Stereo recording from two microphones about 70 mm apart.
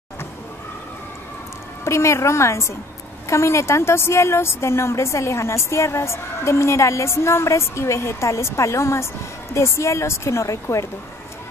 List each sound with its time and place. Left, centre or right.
1.9 s a woman's voice: left